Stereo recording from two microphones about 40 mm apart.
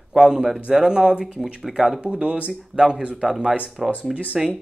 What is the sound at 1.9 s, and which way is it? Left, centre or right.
Speech, right.